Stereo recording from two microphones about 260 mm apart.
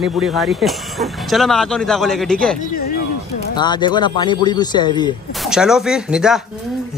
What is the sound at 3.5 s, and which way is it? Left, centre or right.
A man's voice, centre.